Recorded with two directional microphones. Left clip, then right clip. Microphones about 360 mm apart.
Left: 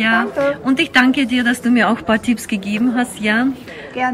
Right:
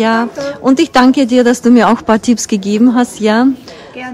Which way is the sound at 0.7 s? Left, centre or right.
Centre.